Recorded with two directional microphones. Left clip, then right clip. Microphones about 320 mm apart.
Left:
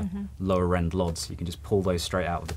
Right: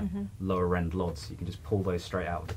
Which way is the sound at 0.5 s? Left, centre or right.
Left.